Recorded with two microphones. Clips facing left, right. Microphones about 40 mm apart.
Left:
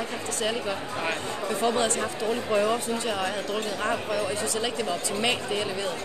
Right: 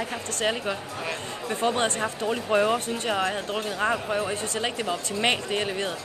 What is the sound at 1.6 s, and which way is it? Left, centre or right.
A woman's voice, right.